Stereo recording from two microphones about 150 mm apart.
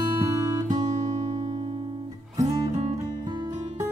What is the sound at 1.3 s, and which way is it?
Music, 45° right (ahead or behind).